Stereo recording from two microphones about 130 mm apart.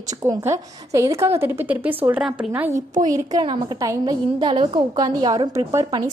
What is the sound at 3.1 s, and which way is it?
Speech, 35° right (ahead or behind).